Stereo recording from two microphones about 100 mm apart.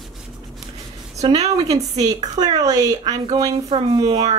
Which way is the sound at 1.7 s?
40° right (ahead or behind).